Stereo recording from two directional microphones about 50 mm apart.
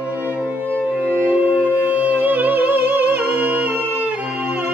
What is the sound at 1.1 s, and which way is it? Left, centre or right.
Music, right.